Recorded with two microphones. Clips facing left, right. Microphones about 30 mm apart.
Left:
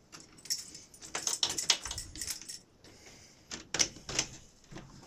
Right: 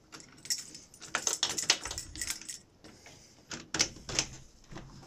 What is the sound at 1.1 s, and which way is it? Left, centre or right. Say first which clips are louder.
Typing: right 2 dB; right.